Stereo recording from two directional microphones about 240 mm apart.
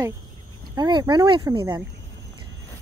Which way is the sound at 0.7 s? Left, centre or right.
Centre.